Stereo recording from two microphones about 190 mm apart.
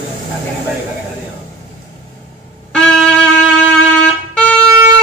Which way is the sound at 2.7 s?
5° left (ahead or behind).